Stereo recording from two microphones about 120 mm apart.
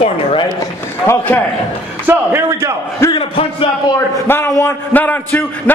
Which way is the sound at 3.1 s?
50° left (ahead or behind).